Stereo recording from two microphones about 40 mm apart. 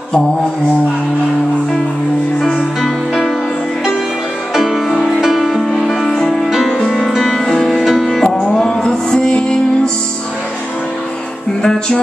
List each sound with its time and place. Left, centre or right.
2.5 s music: centre
4.6 s music: centre
6.5 s music: centre
7.2 s music: centre
7.8 s music: centre
8.1 s music: centre